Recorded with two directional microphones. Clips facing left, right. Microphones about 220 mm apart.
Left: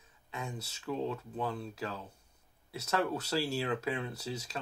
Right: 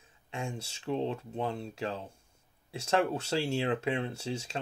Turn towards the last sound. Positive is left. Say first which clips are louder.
# right 3 dB
turn(degrees=-25)  # may be behind; listen again after turning